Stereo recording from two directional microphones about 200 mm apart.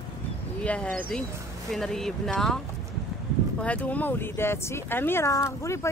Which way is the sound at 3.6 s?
5° left (ahead or behind).